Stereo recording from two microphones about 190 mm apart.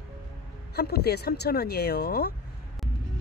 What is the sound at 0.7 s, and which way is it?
Speech, 55° left (ahead or behind).